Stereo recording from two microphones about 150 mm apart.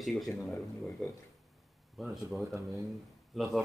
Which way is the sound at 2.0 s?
Centre (ahead or behind).